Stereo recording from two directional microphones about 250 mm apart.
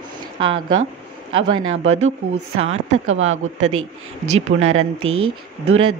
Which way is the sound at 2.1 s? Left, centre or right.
Right.